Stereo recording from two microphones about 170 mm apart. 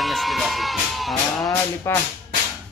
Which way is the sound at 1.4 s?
20° left (ahead or behind).